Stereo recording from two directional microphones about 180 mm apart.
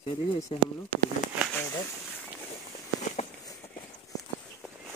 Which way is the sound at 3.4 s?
20° left (ahead or behind).